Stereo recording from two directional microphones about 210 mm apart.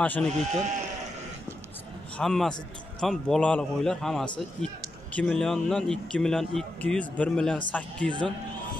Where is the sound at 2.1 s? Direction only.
5° left (ahead or behind).